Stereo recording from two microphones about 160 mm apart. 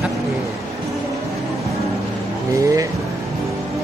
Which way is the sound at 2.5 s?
20° right (ahead or behind).